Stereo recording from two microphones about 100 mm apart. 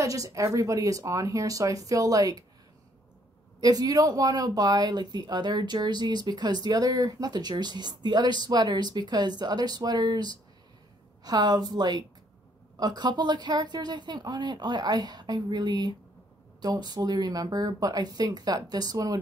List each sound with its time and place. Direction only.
0.0 s speech: 35° right (ahead or behind)
3.6 s speech: 40° right (ahead or behind)